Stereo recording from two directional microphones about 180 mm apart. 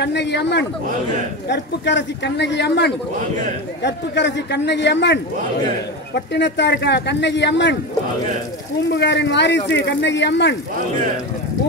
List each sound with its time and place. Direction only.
0.0 s speech: 70° left (ahead or behind)
8.9 s speech: 70° left (ahead or behind)